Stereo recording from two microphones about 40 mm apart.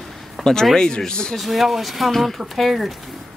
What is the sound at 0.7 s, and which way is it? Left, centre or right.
Speech, centre.